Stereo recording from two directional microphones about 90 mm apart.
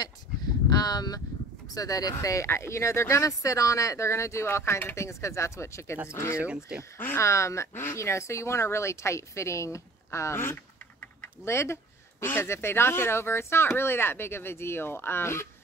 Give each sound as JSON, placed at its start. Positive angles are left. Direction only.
{"t": 0.7, "sound": "speech", "side_deg": 50}
{"t": 6.3, "sound": "speech", "side_deg": -10}
{"t": 6.8, "sound": "speech", "side_deg": 25}